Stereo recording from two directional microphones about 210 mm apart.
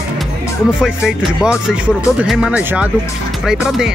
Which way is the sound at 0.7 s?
5° right (ahead or behind).